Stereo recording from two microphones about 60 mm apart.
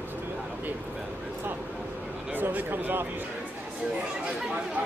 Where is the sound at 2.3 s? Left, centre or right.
Right.